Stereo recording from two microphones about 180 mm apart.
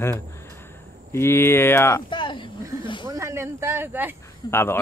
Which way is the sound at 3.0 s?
15° right (ahead or behind).